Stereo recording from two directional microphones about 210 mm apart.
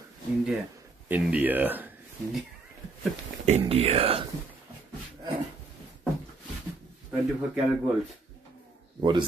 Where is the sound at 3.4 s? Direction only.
30° right (ahead or behind).